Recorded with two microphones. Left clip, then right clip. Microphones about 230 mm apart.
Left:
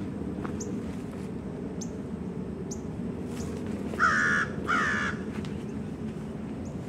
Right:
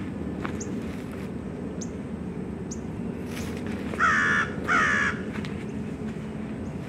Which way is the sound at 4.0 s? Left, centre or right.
Centre.